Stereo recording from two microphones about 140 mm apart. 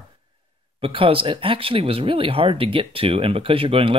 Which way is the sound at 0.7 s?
40° right (ahead or behind).